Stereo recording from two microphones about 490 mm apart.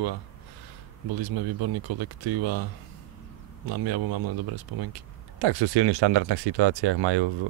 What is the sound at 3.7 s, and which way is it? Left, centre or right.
Speech, right.